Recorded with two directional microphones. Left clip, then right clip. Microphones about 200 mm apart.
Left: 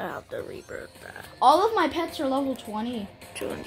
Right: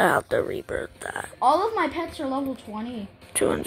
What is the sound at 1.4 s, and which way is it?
Speech, 15° left (ahead or behind).